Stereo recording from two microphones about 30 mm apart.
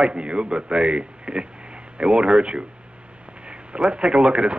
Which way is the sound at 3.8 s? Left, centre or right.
Right.